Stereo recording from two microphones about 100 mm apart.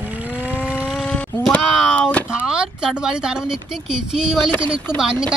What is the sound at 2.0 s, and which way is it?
Speech, 15° left (ahead or behind).